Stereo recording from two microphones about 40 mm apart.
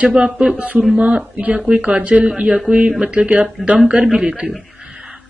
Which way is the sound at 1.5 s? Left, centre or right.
Right.